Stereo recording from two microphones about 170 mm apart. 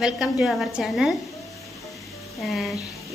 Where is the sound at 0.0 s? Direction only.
Centre (ahead or behind).